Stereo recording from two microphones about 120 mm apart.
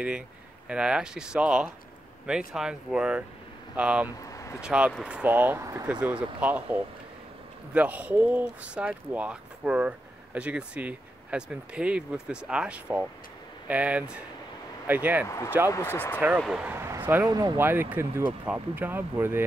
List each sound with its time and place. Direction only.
0.7 s speech: 5° right (ahead or behind)
4.2 s a sound: 25° left (ahead or behind)
4.6 s speech: 10° right (ahead or behind)
5.6 s speech: 25° right (ahead or behind)
5.9 s speech: 10° right (ahead or behind)
15.2 s speech: 25° left (ahead or behind)
16.3 s speech: 5° right (ahead or behind)
16.7 s a sound: 20° right (ahead or behind)
17.3 s speech: 35° right (ahead or behind)
17.6 s speech: 20° right (ahead or behind)